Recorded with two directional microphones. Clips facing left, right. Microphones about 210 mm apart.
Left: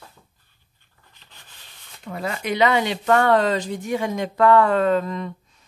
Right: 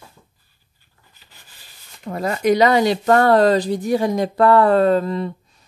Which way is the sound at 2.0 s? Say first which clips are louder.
Right 8 dB; 40° right (ahead or behind).